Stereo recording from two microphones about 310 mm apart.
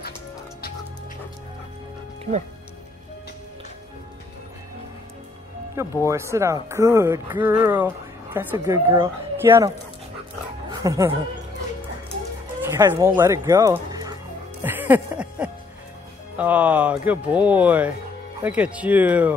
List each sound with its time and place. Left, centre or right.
6.0 s speech: centre
10.7 s speech: centre
12.6 s speech: centre
14.6 s music: centre
16.3 s speech: centre